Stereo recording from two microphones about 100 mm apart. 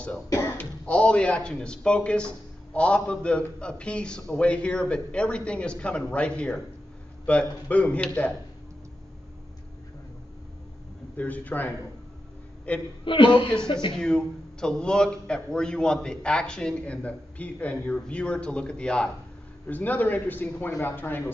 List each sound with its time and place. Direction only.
0.6 s speech: 10° left (ahead or behind)
11.1 s speech: 15° left (ahead or behind)
13.0 s a man's voice: 55° left (ahead or behind)
13.9 s speech: 10° left (ahead or behind)